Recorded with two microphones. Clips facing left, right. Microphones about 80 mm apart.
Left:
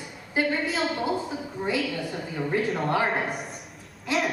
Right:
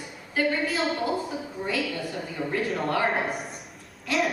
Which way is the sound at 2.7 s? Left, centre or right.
Centre.